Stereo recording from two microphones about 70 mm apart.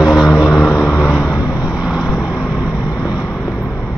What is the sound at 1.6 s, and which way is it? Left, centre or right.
Vehicle, centre.